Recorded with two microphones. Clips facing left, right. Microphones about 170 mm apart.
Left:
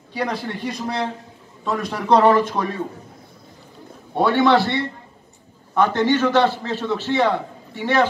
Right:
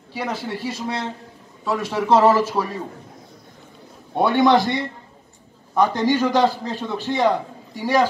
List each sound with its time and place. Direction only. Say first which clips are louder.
0.1 s a man's voice: left 2 dB; 5° right (ahead or behind)
4.1 s a man's voice: even; 15° right (ahead or behind)